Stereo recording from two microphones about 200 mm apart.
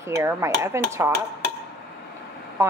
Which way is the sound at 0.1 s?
15° right (ahead or behind).